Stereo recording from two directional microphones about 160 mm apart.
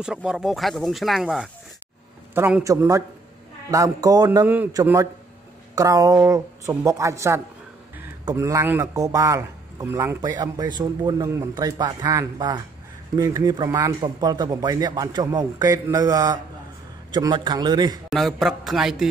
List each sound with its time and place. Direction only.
0.0 s speech: 5° right (ahead or behind)
2.3 s a man's voice: 15° right (ahead or behind)
18.1 s speech: centre (ahead or behind)